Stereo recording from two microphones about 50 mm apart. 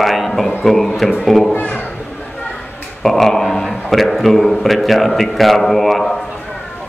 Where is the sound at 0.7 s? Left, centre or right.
Centre.